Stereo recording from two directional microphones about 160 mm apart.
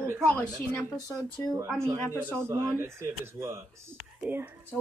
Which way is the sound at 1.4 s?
15° left (ahead or behind).